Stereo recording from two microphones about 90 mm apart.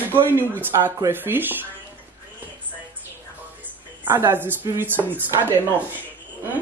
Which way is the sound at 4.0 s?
25° right (ahead or behind).